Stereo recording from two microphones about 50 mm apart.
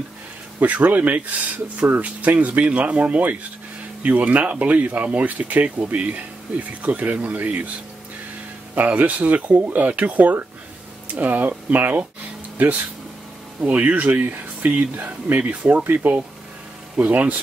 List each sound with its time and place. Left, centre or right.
0.6 s speech: right
8.7 s speech: right
13.6 s speech: right
13.9 s speech: right